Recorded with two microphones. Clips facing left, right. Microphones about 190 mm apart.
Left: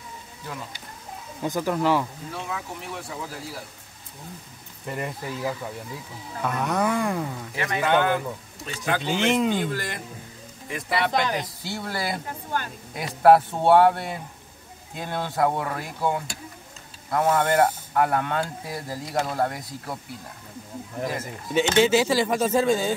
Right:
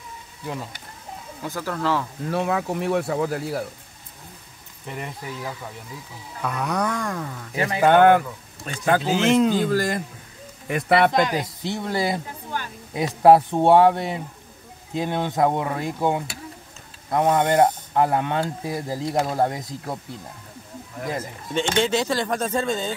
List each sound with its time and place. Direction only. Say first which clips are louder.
1.4 s speech: left 3 dB; 15° left (ahead or behind)
2.3 s speech: right 11 dB; 65° right (ahead or behind)
4.8 s speech: left 2 dB; centre (ahead or behind)
6.4 s a sound: left 1 dB; centre (ahead or behind)
7.5 s a man's voice: right 4 dB; 30° right (ahead or behind)
7.8 s speech: right 8 dB; 55° right (ahead or behind)
8.6 s speech: right 6 dB; 45° right (ahead or behind)
9.0 s a sound: right 2 dB; centre (ahead or behind)
9.7 s a man's voice: right 8 dB; 40° right (ahead or behind)
10.7 s speech: right 8 dB; 60° right (ahead or behind)
11.2 s speech: right 3 dB; 20° right (ahead or behind)
21.5 s speech: left 3 dB; 5° left (ahead or behind)